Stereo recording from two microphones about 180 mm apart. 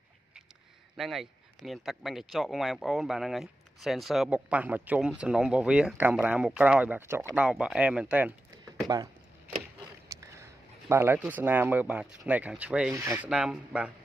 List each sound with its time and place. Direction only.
0.9 s speech: centre (ahead or behind)
8.8 s speech: 20° right (ahead or behind)
10.2 s speech: 15° right (ahead or behind)